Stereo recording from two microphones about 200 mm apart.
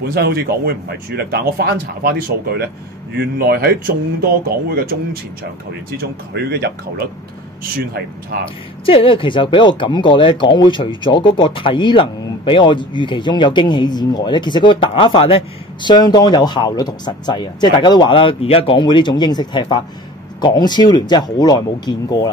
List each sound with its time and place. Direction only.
0.1 s a man's voice: 55° right (ahead or behind)
8.8 s speech: 25° left (ahead or behind)